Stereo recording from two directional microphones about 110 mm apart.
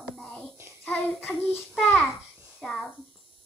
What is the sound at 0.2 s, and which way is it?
Child singing, 10° left (ahead or behind).